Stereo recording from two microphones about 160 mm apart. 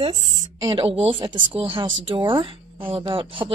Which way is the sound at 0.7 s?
35° right (ahead or behind).